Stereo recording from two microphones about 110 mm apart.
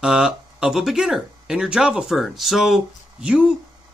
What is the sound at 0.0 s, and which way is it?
Speech, 5° right (ahead or behind).